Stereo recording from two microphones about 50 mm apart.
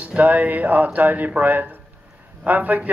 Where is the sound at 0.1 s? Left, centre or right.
Right.